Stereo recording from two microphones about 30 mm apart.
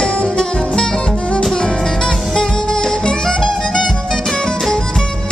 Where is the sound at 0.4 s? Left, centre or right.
Left.